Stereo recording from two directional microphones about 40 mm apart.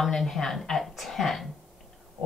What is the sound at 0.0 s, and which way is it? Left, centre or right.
Speech, centre.